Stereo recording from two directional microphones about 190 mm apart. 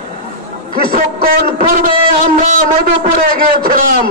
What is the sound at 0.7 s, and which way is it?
Speech, 50° right (ahead or behind).